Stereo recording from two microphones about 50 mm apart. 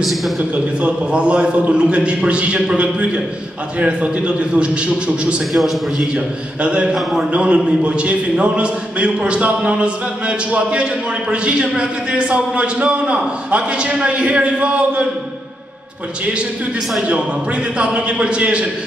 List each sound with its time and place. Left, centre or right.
0.0 s a man's voice: centre
0.4 s a man's voice: right
5.5 s a man's voice: centre
6.1 s a man's voice: right
7.0 s a man's voice: centre
7.2 s a man's voice: right
17.1 s a man's voice: right